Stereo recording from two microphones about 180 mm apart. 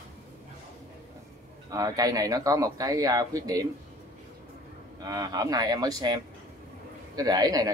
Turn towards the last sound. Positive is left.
turn(degrees=-20)  # may be behind; listen again after turning